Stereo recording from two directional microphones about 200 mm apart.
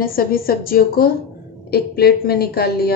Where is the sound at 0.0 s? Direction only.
45° left (ahead or behind).